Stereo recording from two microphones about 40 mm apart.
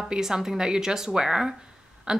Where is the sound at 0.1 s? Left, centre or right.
Centre.